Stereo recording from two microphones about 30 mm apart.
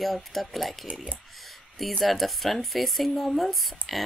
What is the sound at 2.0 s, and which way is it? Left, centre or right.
Speech, centre.